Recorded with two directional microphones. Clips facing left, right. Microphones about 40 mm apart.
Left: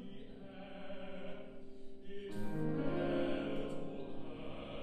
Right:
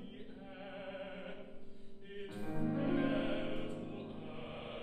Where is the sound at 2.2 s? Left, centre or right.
Right.